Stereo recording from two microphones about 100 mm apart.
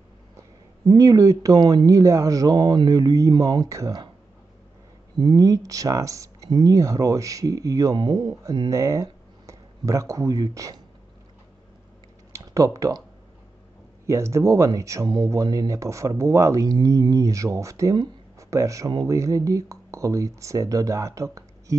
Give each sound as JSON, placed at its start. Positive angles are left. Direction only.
{"t": 0.8, "sound": "speech", "side_deg": -35}
{"t": 5.2, "sound": "speech", "side_deg": -35}
{"t": 12.3, "sound": "computer keyboard", "side_deg": -30}
{"t": 14.0, "sound": "speech", "side_deg": -30}